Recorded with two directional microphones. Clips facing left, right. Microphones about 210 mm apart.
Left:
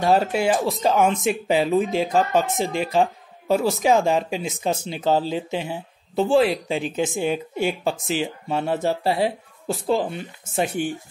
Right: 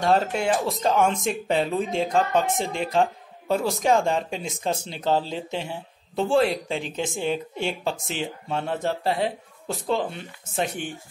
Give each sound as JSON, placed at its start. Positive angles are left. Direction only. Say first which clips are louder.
{"t": 0.0, "sound": "speech", "louder": "left 3 dB", "side_deg": 5}